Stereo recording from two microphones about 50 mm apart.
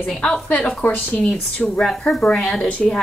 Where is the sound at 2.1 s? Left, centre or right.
Centre.